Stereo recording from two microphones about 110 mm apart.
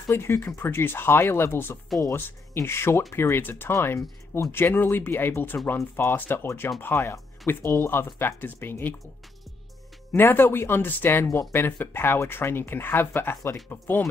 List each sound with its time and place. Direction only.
0.1 s speech: 25° left (ahead or behind)
10.1 s speech: 20° left (ahead or behind)